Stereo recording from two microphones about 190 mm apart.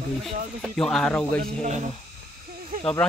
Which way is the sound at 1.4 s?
40° right (ahead or behind).